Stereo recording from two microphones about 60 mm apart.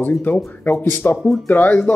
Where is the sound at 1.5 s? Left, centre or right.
Left.